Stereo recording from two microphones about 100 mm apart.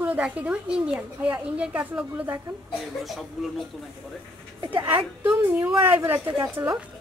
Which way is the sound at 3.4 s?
5° right (ahead or behind).